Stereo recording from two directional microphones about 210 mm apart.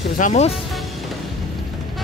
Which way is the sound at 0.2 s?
30° left (ahead or behind).